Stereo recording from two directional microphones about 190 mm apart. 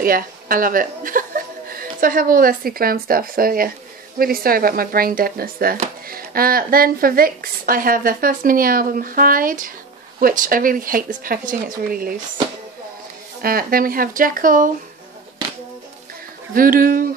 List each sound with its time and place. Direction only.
0.0 s a woman's voice: 50° right (ahead or behind)
13.4 s a woman's voice: 50° right (ahead or behind)
16.5 s a woman's voice: 50° right (ahead or behind)